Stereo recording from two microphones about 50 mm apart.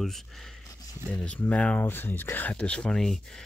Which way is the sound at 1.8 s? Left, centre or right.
Left.